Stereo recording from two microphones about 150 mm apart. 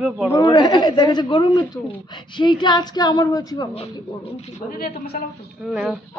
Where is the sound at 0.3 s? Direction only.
25° left (ahead or behind).